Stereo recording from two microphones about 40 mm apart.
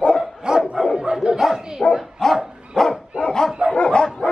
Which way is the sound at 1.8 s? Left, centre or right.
Left.